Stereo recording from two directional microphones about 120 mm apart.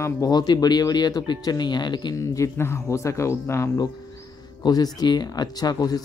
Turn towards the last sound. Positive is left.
turn(degrees=30)  # may be behind; listen again after turning